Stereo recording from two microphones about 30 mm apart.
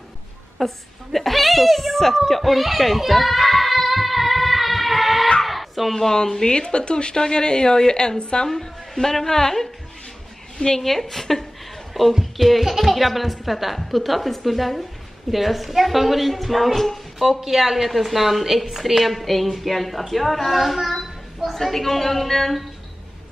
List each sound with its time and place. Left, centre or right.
0.6 s speech: centre
2.4 s a sound: centre
5.9 s a woman's voice: centre
6.5 s speech: left
8.5 s a woman's voice: centre
10.8 s a woman's voice: centre
11.9 s a woman's voice: centre
19.0 s a woman's voice: centre
20.9 s a sound: centre